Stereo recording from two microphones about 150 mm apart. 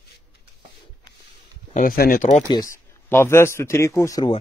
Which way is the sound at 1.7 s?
70° left (ahead or behind).